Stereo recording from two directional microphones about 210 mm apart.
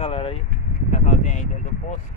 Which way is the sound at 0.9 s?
35° left (ahead or behind).